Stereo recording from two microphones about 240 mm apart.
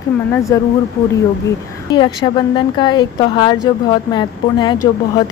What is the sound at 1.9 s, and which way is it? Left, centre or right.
A woman's voice, centre.